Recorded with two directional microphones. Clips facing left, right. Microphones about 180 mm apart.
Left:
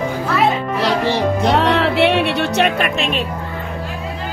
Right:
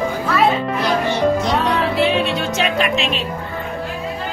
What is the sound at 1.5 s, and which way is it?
Music, 75° left (ahead or behind).